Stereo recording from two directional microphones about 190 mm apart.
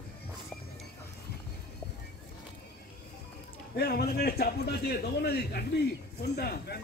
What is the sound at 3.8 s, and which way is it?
Speech, 55° left (ahead or behind).